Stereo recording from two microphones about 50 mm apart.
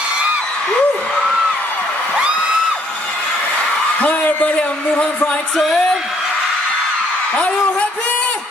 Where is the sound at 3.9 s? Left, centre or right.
Left.